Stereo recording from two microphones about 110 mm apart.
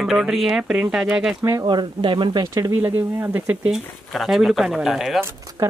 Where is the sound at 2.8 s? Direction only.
20° right (ahead or behind).